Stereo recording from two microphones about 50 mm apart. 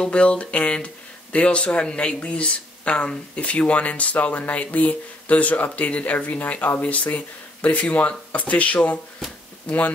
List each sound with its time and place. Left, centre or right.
0.0 s speech: left